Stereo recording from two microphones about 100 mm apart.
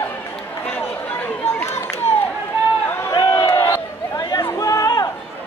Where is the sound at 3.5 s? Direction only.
25° left (ahead or behind).